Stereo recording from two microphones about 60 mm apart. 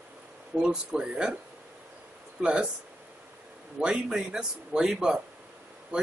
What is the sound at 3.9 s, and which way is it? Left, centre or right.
Speech, centre.